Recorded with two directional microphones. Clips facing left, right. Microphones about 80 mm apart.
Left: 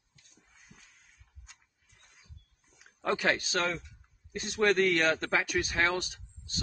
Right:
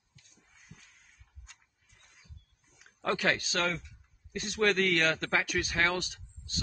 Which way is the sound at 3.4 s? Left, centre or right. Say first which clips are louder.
Left 1 dB; left.